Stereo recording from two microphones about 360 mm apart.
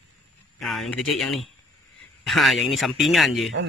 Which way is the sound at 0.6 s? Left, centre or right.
Centre.